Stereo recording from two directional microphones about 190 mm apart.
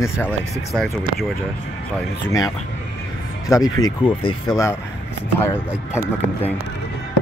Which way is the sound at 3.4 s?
20° left (ahead or behind).